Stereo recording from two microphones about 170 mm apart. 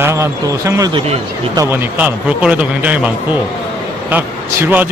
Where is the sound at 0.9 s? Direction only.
35° right (ahead or behind).